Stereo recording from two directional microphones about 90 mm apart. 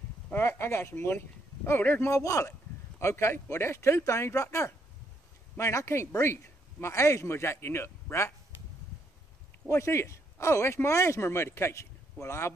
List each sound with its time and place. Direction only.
0.3 s speech: 30° left (ahead or behind)
9.7 s speech: 30° left (ahead or behind)